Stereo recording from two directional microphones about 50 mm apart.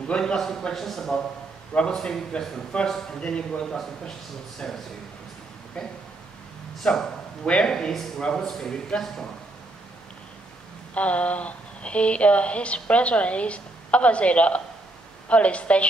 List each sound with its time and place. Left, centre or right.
0.2 s a man's voice: centre
1.7 s a woman's voice: left
4.6 s a man's voice: centre
7.4 s a woman's voice: left
7.7 s a man's voice: centre
11.0 s a woman's voice: left